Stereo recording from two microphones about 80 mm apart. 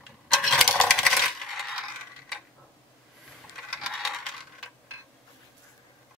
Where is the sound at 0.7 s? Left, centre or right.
Centre.